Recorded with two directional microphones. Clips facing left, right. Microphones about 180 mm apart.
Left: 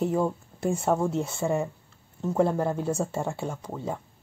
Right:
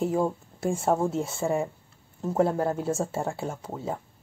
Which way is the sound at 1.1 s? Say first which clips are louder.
Even; 10° right (ahead or behind).